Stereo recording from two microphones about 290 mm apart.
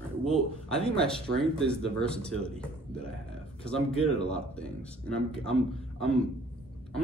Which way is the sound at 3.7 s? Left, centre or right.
Centre.